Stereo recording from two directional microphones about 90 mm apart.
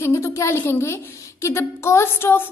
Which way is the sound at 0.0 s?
30° left (ahead or behind).